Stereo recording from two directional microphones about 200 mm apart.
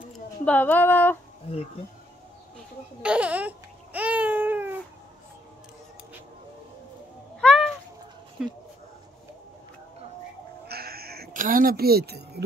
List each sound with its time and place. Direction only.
0.5 s speech: 5° left (ahead or behind)
3.0 s babbling: 5° right (ahead or behind)
7.3 s cat: centre (ahead or behind)
8.4 s speech: 5° right (ahead or behind)
10.7 s a sound: 50° right (ahead or behind)